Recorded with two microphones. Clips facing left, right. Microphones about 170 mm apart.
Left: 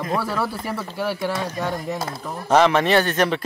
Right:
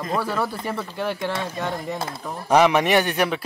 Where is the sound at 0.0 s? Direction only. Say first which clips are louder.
Left 1 dB; 5° left (ahead or behind).